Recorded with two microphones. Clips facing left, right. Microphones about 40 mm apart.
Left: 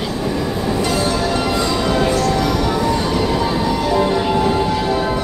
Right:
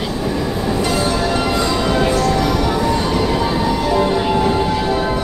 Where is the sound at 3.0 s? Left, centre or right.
Right.